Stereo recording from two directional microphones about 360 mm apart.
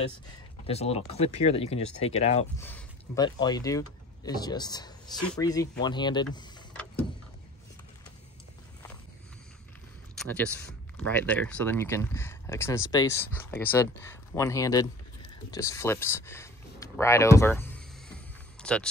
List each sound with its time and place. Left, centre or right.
0.7 s speech: centre
6.2 s vehicle: centre
10.1 s speech: centre
18.6 s a sound: centre